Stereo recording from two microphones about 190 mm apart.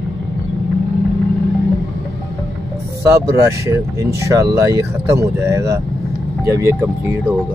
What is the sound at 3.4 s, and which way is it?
Speech, 15° right (ahead or behind).